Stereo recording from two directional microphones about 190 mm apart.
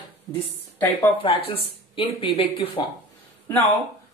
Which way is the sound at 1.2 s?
30° left (ahead or behind).